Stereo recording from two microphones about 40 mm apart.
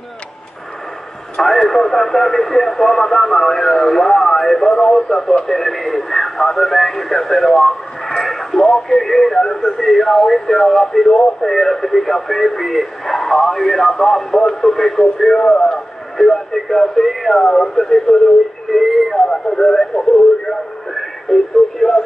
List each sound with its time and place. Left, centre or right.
1.4 s speech: centre
16.2 s speech: centre
17.4 s speech: centre